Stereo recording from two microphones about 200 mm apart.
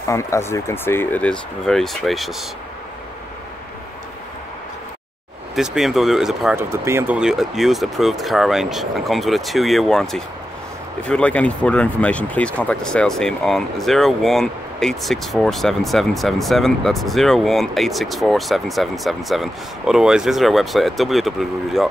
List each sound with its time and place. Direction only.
0.0 s speech: 15° left (ahead or behind)
5.6 s speech: centre (ahead or behind)
6.7 s speech: 15° right (ahead or behind)